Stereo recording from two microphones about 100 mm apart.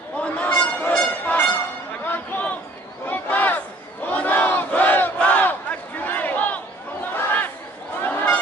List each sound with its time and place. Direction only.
0.2 s a sound: 10° left (ahead or behind)
3.1 s battle cry: 15° left (ahead or behind)
7.2 s chatter: 20° left (ahead or behind)
8.0 s goose: 15° left (ahead or behind)